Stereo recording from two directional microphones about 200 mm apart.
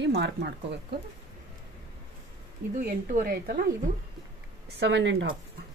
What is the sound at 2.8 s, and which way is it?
Speech, 45° right (ahead or behind).